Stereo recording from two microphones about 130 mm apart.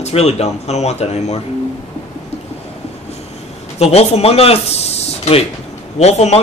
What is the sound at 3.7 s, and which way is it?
A man's voice, 55° left (ahead or behind).